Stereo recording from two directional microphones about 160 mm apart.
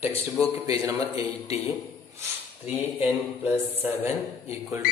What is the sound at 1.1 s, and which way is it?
Speech, 40° left (ahead or behind).